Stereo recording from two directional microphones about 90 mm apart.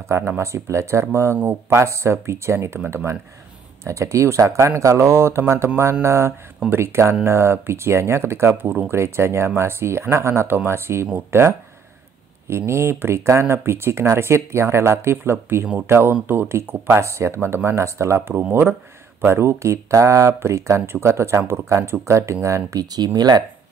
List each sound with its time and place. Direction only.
0.1 s speech: 30° right (ahead or behind); by 23.4 s 50° right (ahead or behind)